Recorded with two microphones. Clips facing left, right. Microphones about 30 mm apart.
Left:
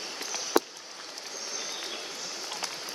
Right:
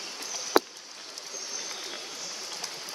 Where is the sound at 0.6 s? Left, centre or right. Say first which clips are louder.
Right 2 dB; right.